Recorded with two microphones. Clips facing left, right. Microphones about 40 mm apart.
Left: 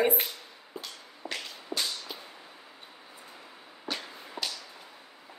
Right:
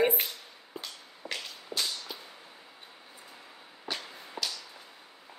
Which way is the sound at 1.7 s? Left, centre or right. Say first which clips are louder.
Left 1 dB; left.